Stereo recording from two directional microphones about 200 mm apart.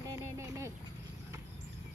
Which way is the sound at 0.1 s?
15° right (ahead or behind).